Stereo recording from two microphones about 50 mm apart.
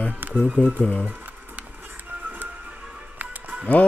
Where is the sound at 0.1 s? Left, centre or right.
Right.